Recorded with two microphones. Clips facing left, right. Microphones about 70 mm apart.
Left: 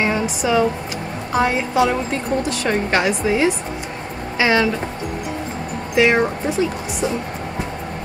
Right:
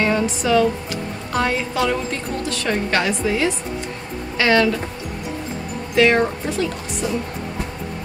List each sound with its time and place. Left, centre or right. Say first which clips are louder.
0.0 s a woman's voice: even; centre
5.9 s a woman's voice: even; centre